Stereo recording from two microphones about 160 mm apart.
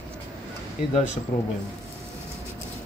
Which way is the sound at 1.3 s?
55° left (ahead or behind).